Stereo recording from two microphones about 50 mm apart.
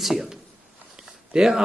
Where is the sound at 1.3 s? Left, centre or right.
Centre.